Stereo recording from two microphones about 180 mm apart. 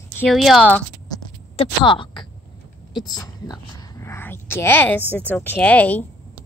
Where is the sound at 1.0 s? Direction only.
30° left (ahead or behind); by 5.0 s 10° left (ahead or behind).